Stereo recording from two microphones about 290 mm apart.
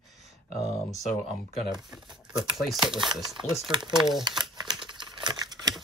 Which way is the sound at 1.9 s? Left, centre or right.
Centre.